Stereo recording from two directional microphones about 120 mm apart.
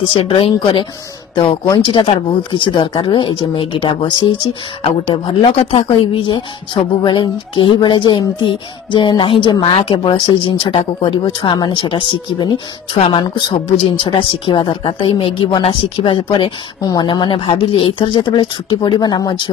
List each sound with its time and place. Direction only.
0.0 s a woman's voice: 45° left (ahead or behind)